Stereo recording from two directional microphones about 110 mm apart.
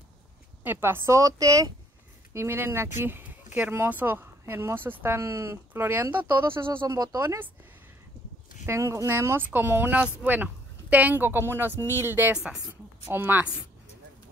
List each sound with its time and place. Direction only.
0.7 s speech: 20° right (ahead or behind)
7.0 s speech: 35° right (ahead or behind)
8.6 s speech: 25° right (ahead or behind)
12.4 s a woman's voice: 10° right (ahead or behind)
13.1 s a woman's voice: 20° right (ahead or behind)